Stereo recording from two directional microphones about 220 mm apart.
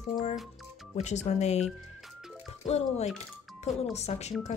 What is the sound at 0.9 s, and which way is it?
Speech, 30° left (ahead or behind).